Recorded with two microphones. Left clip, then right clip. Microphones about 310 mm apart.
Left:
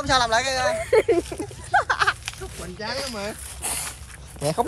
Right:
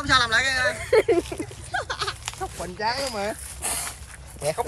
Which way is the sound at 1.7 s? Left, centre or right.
Left.